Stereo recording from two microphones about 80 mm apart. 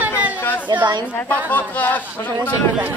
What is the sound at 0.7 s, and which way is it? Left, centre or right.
Speech, right.